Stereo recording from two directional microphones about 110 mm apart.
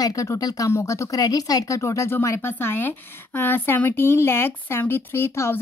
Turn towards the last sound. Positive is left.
turn(degrees=25)  # may be behind; listen again after turning